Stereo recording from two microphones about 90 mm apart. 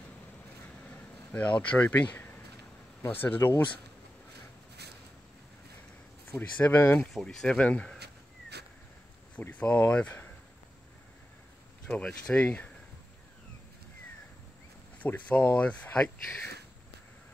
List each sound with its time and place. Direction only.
1.3 s speech: 15° left (ahead or behind)
6.6 s speech: 20° left (ahead or behind)
7.2 s speech: 5° left (ahead or behind)
9.3 s speech: 15° left (ahead or behind)
11.9 s speech: 10° left (ahead or behind)
15.0 s speech: 15° left (ahead or behind)